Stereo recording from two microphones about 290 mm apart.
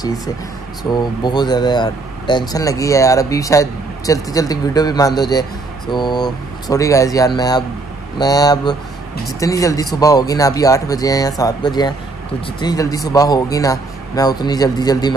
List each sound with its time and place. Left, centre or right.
0.9 s speech: centre